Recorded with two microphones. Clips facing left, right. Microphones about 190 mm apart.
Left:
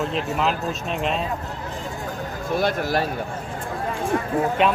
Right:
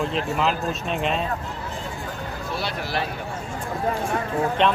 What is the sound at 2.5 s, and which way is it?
Speech, 50° left (ahead or behind).